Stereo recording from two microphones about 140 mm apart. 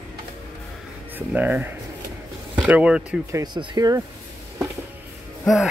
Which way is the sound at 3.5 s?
30° right (ahead or behind).